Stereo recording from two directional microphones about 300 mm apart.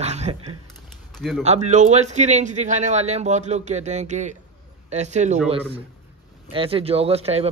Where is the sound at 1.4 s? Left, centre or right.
Right.